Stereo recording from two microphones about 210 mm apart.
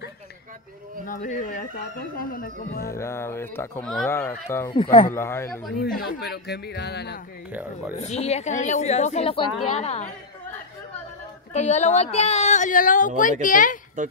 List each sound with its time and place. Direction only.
1.0 s speech: 40° left (ahead or behind)
2.9 s speech: 15° left (ahead or behind)
5.8 s speech: 45° left (ahead or behind)
8.0 s speech: 30° left (ahead or behind)
11.5 s speech: 35° left (ahead or behind)
14.0 s speech: 35° right (ahead or behind)